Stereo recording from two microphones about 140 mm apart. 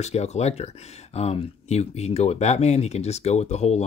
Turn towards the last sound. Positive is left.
turn(degrees=50)  # may be behind; listen again after turning